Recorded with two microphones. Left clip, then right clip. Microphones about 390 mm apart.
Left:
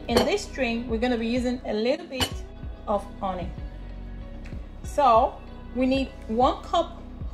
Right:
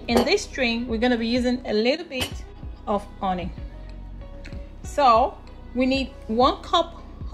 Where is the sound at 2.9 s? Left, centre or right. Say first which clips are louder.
Right 2 dB; right.